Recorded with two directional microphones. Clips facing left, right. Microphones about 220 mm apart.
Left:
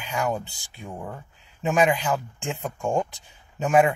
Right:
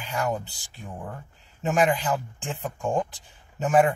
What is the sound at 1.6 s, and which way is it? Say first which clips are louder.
Speech: left 1 dB; centre (ahead or behind).